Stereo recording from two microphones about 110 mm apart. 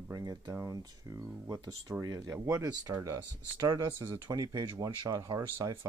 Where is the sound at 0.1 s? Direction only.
30° right (ahead or behind).